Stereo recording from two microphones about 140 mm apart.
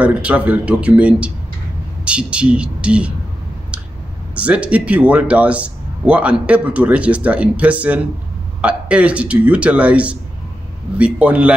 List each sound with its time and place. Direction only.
0.0 s speech: 10° right (ahead or behind)
4.4 s speech: 10° right (ahead or behind)